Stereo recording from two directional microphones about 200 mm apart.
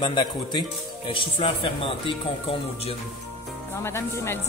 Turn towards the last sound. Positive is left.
turn(degrees=15)  # may be behind; listen again after turning